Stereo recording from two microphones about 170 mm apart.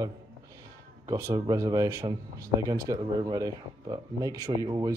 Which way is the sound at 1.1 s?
15° right (ahead or behind).